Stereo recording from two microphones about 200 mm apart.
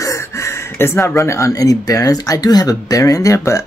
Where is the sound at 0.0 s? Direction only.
15° left (ahead or behind).